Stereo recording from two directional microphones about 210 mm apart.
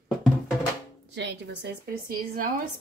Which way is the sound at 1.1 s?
55° right (ahead or behind).